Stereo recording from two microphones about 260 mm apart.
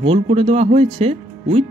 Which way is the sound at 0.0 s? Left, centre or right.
Right.